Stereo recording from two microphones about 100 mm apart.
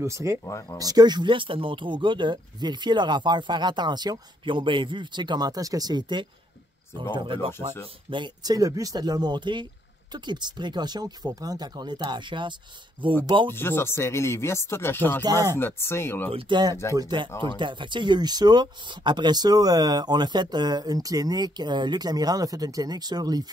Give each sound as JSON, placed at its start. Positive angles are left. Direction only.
{"t": 0.0, "sound": "speech", "side_deg": -30}
{"t": 7.2, "sound": "speech", "side_deg": -60}
{"t": 8.1, "sound": "speech", "side_deg": -45}
{"t": 13.5, "sound": "speech", "side_deg": 25}
{"t": 16.3, "sound": "speech", "side_deg": -65}
{"t": 16.9, "sound": "speech", "side_deg": -40}
{"t": 17.4, "sound": "speech", "side_deg": -50}